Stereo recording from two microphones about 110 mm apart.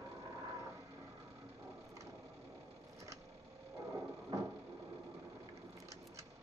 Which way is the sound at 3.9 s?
30° right (ahead or behind).